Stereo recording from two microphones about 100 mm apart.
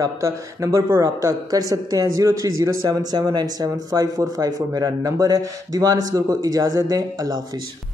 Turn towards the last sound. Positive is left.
turn(degrees=-40)  # may be behind; listen again after turning